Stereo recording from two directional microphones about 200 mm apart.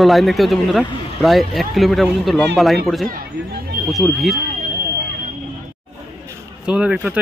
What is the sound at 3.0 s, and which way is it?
Speech, 45° right (ahead or behind).